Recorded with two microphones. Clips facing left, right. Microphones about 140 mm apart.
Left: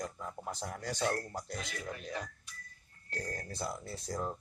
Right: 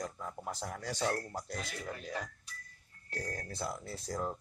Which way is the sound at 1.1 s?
5° right (ahead or behind).